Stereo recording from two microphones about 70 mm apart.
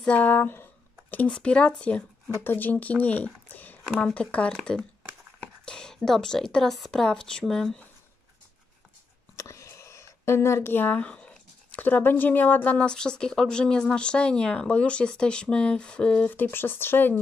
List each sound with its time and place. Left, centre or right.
0.0 s speech: left
1.3 s speech: centre
2.4 s speech: left
3.4 s a sound: left
4.0 s a woman's voice: centre
9.4 s a sound: left
12.7 s speech: centre
16.3 s speech: left